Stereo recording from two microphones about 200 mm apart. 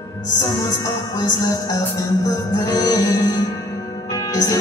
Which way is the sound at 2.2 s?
20° left (ahead or behind).